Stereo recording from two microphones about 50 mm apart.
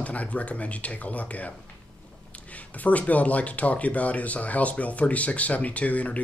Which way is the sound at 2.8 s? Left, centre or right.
Left.